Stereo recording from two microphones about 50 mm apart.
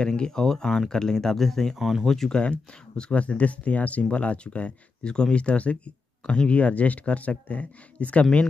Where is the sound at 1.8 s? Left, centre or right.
Centre.